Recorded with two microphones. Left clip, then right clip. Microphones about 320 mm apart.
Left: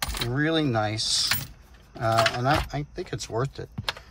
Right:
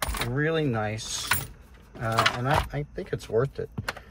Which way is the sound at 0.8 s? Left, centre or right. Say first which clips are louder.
Left 5 dB; centre.